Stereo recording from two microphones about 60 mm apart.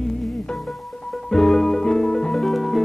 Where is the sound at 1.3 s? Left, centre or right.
Centre.